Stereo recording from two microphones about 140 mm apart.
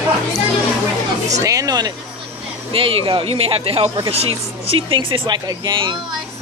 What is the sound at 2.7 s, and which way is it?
Speech, 40° right (ahead or behind).